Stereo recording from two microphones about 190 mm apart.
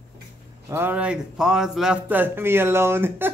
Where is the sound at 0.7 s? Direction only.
10° right (ahead or behind).